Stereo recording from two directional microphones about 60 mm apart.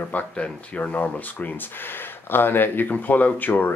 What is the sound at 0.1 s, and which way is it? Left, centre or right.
Speech, left.